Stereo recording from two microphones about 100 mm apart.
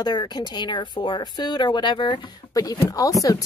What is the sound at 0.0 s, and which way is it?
Speech, 45° left (ahead or behind).